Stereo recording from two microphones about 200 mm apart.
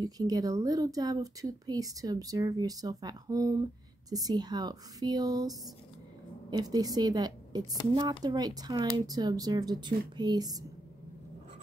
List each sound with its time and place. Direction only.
0.0 s speech: 20° right (ahead or behind)